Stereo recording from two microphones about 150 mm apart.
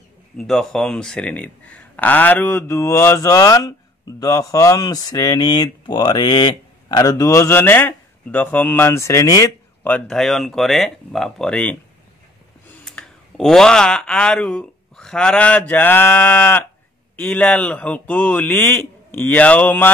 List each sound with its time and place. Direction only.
0.4 s speech: centre (ahead or behind); by 9.5 s 20° left (ahead or behind)
9.8 s speech: 5° left (ahead or behind)
12.8 s speech: 5° left (ahead or behind)